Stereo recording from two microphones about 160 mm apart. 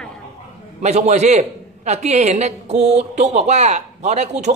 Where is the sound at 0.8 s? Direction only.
45° right (ahead or behind).